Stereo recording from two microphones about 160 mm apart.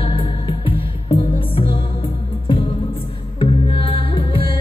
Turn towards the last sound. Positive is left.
turn(degrees=35)  # may be behind; listen again after turning